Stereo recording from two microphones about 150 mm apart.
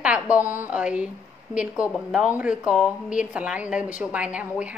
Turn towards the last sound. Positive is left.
turn(degrees=-10)  # may be behind; listen again after turning